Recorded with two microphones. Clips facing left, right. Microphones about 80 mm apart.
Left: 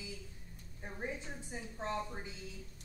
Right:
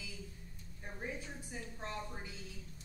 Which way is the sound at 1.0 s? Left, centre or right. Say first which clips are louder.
Left 2 dB; centre.